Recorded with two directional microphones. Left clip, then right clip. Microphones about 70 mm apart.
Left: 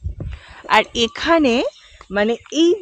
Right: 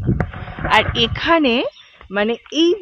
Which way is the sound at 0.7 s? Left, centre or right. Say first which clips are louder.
Right 1 dB; left.